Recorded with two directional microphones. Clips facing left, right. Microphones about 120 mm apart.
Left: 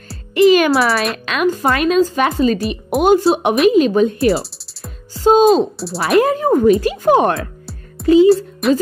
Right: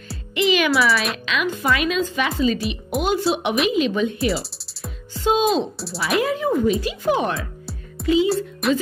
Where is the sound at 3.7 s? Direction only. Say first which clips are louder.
Left 8 dB; 45° left (ahead or behind).